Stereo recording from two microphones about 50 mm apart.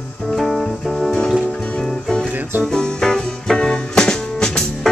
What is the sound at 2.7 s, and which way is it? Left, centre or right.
Music, centre.